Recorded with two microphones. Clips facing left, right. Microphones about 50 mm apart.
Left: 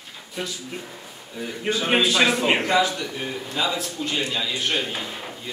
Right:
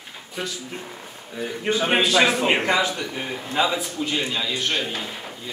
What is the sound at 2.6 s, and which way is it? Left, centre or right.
A man's voice, right.